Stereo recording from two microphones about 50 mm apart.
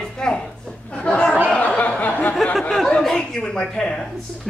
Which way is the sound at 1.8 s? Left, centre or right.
Left.